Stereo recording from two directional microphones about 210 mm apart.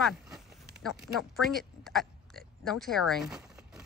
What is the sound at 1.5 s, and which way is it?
Oink, centre (ahead or behind).